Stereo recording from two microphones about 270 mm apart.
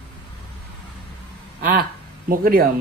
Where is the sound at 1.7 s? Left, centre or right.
Right.